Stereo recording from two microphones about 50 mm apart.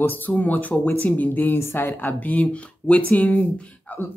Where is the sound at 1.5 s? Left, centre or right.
Left.